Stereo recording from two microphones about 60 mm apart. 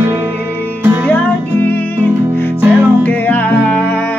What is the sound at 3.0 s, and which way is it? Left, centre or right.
Music, left.